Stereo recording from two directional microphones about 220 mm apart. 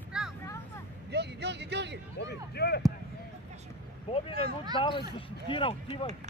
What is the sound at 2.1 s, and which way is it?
Speech, 50° left (ahead or behind).